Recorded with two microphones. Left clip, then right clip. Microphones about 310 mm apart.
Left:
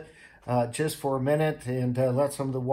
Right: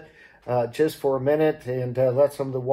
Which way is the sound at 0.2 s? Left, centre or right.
Left.